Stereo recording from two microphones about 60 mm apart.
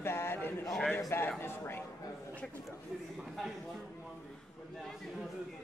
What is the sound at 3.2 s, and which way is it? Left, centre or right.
A man's voice, centre.